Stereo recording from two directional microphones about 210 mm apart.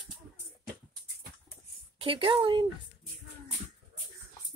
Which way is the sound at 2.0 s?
25° right (ahead or behind).